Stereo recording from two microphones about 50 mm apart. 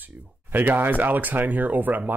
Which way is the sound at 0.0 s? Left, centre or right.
Right.